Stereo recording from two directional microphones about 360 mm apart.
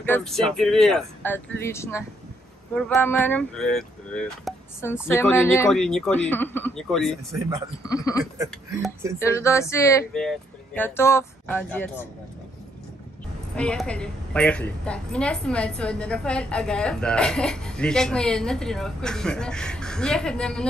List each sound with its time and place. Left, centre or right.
0.0 s a woman's voice: centre
7.9 s a sound: centre
8.4 s a woman's voice: centre
13.6 s a woman's voice: centre